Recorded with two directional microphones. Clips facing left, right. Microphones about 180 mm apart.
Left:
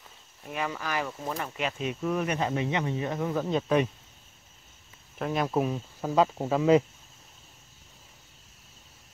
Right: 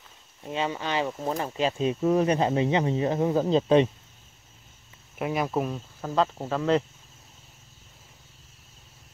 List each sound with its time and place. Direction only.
0.5 s speech: 25° right (ahead or behind)
5.2 s speech: 5° right (ahead or behind)